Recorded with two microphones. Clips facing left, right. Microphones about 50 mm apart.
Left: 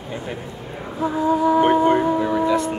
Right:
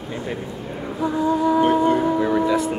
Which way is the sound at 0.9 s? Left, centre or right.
Centre.